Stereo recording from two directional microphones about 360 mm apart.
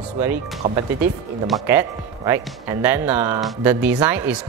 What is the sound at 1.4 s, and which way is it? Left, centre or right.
Speech, centre.